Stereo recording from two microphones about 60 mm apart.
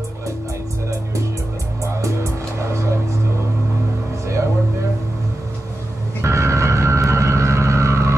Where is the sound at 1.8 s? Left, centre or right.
Right.